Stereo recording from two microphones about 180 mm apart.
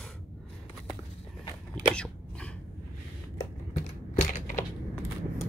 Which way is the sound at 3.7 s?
45° left (ahead or behind).